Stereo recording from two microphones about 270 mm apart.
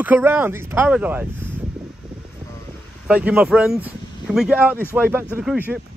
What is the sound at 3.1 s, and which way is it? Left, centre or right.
Speech, centre.